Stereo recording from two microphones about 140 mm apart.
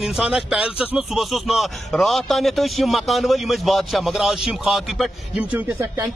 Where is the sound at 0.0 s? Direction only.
5° right (ahead or behind).